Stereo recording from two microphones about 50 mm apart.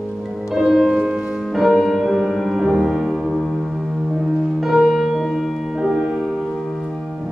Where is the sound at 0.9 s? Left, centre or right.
Centre.